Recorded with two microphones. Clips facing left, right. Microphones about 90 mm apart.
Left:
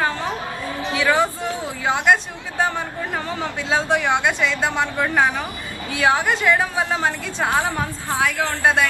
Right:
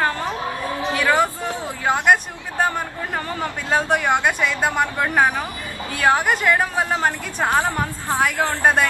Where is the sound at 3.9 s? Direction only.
10° right (ahead or behind).